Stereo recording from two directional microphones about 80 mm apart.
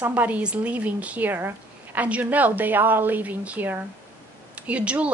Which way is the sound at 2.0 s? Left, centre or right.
Centre.